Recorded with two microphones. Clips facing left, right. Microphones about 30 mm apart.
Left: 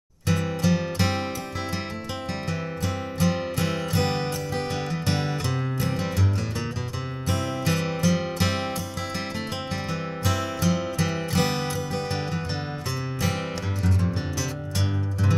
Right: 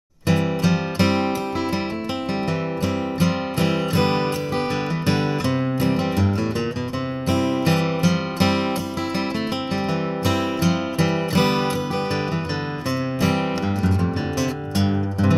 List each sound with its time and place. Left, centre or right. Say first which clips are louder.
0.3 s music: right 4 dB; right
3.2 s music: right 1 dB; right
5.8 s music: right 7 dB; right
7.2 s music: right 6 dB; right
10.2 s music: right 3 dB; right